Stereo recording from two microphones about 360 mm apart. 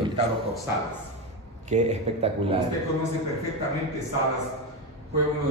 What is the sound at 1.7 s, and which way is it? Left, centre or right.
Speech, centre.